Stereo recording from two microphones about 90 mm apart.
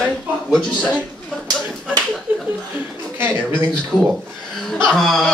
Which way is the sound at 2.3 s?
20° right (ahead or behind).